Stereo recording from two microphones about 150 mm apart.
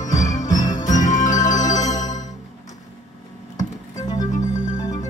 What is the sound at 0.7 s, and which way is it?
Jingle bell, 55° left (ahead or behind).